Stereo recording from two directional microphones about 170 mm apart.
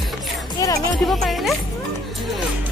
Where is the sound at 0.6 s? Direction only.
20° left (ahead or behind).